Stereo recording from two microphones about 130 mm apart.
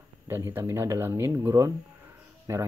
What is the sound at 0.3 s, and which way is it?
Speech, 20° right (ahead or behind).